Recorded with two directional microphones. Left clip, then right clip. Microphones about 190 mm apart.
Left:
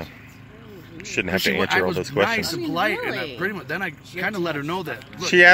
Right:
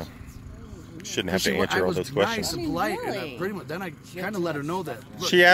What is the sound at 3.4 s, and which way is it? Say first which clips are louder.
Speech: left 5 dB; 20° left (ahead or behind).